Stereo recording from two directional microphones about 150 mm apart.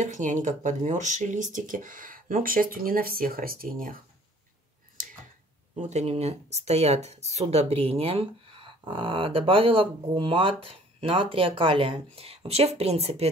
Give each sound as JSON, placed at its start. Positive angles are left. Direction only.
{"t": 0.0, "sound": "speech", "side_deg": -55}
{"t": 5.8, "sound": "speech", "side_deg": -50}